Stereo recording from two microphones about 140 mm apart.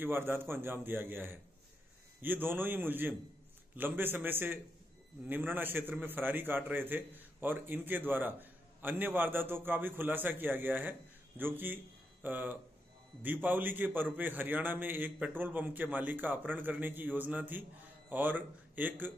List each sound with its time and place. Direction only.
0.0 s a man's voice: 15° right (ahead or behind)